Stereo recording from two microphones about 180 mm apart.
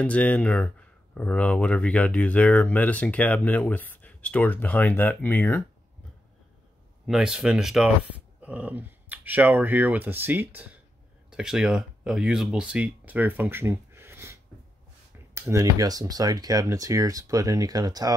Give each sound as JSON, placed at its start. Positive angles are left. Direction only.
{"t": 0.0, "sound": "speech", "side_deg": 10}
{"t": 7.1, "sound": "speech", "side_deg": -5}